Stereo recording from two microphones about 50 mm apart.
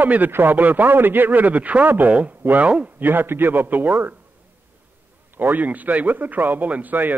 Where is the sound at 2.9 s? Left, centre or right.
Right.